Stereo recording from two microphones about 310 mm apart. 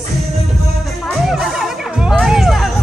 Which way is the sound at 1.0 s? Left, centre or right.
Centre.